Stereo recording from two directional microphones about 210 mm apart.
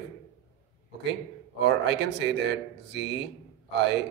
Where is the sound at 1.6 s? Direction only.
55° right (ahead or behind).